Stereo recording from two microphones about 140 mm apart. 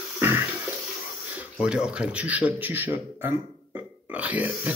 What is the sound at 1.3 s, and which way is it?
Speech, 10° right (ahead or behind).